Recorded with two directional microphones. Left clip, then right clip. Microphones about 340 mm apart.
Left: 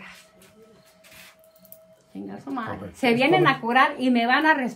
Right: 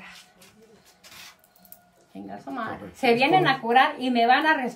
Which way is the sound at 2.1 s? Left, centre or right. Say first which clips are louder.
Left 2 dB; centre.